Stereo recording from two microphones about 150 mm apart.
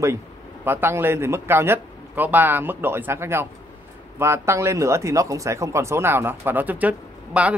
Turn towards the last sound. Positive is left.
turn(degrees=-10)  # may be behind; listen again after turning